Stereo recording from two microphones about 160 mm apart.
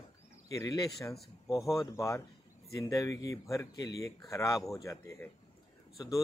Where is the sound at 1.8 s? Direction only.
20° left (ahead or behind).